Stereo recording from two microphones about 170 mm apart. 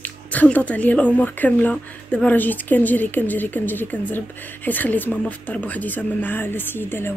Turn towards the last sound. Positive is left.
turn(degrees=15)  # may be behind; listen again after turning